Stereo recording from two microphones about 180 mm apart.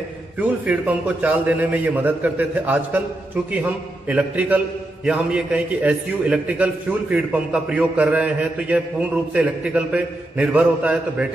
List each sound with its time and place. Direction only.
0.4 s a man's voice: 5° right (ahead or behind)
4.1 s a man's voice: 10° right (ahead or behind)